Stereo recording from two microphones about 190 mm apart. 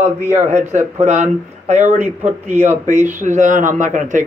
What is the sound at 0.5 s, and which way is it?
Speech, 35° right (ahead or behind).